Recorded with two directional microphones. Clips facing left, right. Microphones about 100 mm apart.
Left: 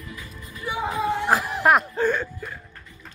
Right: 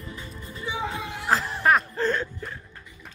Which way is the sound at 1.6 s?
10° left (ahead or behind).